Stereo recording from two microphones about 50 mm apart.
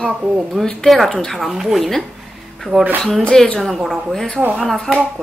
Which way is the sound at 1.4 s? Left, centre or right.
Centre.